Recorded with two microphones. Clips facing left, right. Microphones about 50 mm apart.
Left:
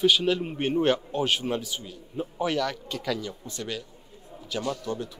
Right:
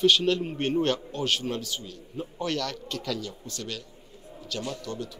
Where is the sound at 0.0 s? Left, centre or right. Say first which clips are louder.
Even; centre.